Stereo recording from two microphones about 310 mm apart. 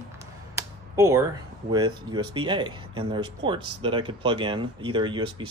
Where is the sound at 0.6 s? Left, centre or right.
Centre.